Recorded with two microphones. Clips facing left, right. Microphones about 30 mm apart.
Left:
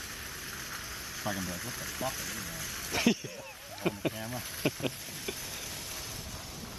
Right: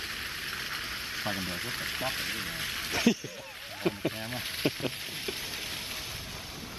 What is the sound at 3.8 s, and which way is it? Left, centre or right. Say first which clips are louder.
Speech: right 2 dB; right.